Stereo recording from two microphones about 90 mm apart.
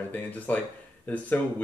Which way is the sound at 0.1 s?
20° left (ahead or behind).